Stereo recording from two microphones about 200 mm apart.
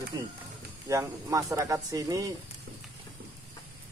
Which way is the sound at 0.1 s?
15° right (ahead or behind).